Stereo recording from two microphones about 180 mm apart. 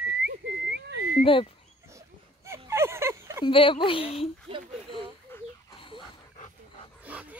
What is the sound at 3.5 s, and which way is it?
Speech, 30° left (ahead or behind).